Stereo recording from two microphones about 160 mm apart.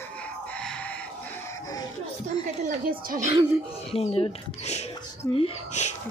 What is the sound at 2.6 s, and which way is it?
Speech, 60° right (ahead or behind).